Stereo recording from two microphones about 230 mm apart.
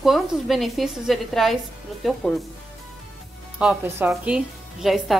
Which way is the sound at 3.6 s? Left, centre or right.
Centre.